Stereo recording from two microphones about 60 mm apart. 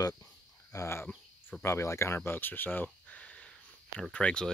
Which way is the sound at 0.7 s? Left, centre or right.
Left.